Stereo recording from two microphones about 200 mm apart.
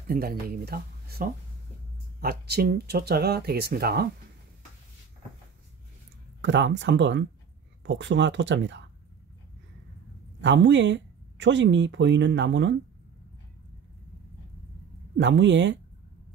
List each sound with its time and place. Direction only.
0.1 s speech: 50° right (ahead or behind)
6.4 s speech: 65° right (ahead or behind)
10.4 s speech: 65° right (ahead or behind)
15.1 s speech: 65° right (ahead or behind)